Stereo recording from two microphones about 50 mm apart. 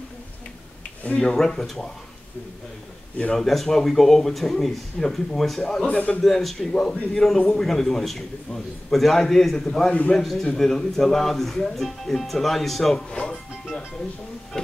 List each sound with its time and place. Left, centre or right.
1.3 s a man's voice: centre
3.3 s speech: centre
5.6 s a man's voice: centre
5.9 s a man's voice: left
6.2 s a man's voice: centre
9.8 s a man's voice: left
10.1 s speech: centre
12.9 s a man's voice: centre
13.3 s music: centre